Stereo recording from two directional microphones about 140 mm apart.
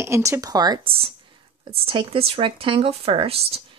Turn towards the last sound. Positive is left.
turn(degrees=-45)  # may be behind; listen again after turning